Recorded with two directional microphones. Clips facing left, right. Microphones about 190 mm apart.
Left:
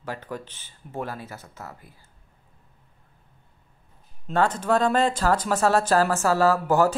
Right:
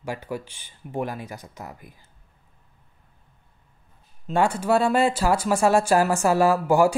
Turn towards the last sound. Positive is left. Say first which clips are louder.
# right 1 dB
turn(degrees=-10)  # may be behind; listen again after turning